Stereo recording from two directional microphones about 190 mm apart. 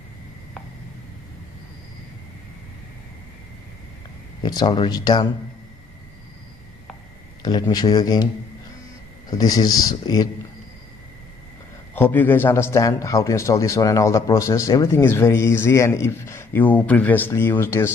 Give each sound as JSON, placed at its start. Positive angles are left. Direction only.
{"t": 4.4, "sound": "speech", "side_deg": 20}
{"t": 7.4, "sound": "speech", "side_deg": 20}
{"t": 9.4, "sound": "speech", "side_deg": 20}
{"t": 11.9, "sound": "speech", "side_deg": 10}